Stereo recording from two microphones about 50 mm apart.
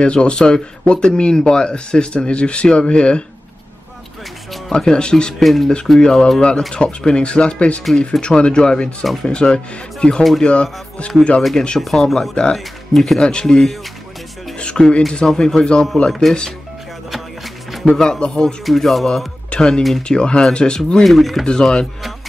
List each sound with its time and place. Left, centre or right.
0.0 s speech: left
4.7 s speech: centre
5.4 s speech: centre
5.9 s speech: centre
11.8 s speech: centre
13.2 s speech: centre
17.1 s music: centre
17.9 s speech: centre
18.7 s speech: centre
19.5 s speech: centre
21.0 s speech: centre
21.5 s speech: centre